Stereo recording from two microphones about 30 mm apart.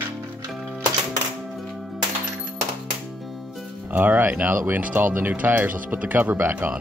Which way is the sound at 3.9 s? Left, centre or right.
Right.